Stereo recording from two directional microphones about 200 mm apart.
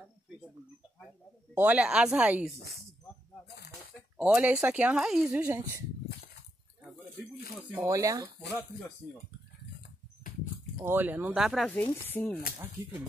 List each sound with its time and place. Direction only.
1.5 s speech: 10° right (ahead or behind)
2.5 s speech: 55° left (ahead or behind)
3.4 s snake: 55° left (ahead or behind)
4.2 s speech: 10° right (ahead or behind)
7.7 s speech: 15° right (ahead or behind)
10.8 s speech: 10° right (ahead or behind); by 12.4 s 10° left (ahead or behind)